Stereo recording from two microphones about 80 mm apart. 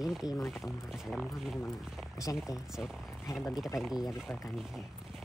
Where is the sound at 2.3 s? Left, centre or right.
Left.